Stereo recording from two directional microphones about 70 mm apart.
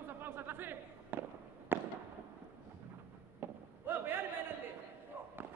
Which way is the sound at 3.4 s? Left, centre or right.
Right.